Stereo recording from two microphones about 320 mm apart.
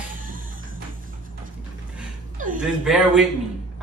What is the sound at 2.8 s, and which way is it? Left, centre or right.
Speech, centre.